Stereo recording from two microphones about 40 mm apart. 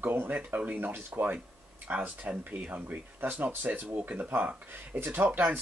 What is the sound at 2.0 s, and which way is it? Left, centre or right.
Speech, right.